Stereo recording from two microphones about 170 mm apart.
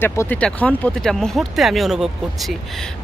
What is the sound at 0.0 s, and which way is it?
Speech, 15° left (ahead or behind).